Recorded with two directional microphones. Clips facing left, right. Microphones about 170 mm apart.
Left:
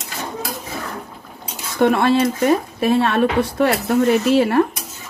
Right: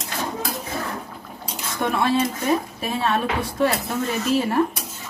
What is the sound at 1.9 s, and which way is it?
Speech, 70° left (ahead or behind).